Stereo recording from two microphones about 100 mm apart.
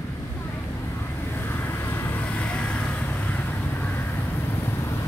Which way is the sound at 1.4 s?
20° left (ahead or behind).